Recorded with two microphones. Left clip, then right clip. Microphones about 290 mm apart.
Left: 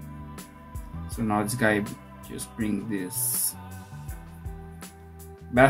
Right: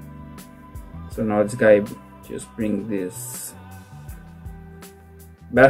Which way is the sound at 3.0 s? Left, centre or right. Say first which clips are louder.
Right 1 dB; centre.